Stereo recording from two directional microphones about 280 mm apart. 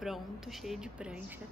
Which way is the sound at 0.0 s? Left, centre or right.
Centre.